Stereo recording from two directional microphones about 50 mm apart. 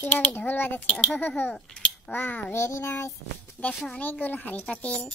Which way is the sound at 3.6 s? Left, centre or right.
Left.